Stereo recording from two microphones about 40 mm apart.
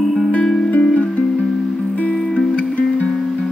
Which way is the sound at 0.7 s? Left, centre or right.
Left.